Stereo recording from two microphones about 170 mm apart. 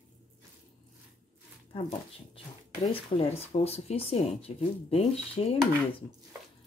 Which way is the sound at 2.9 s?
35° left (ahead or behind).